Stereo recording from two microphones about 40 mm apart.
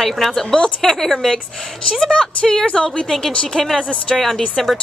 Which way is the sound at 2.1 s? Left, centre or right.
Left.